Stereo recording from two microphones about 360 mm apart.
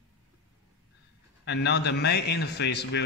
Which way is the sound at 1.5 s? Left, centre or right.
Left.